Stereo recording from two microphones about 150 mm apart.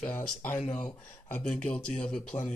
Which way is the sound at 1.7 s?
5° left (ahead or behind).